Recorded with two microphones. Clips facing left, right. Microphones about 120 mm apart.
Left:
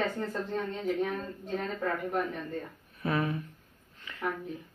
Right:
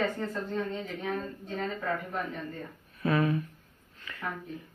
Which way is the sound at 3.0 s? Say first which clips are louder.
Right 3 dB; 25° left (ahead or behind).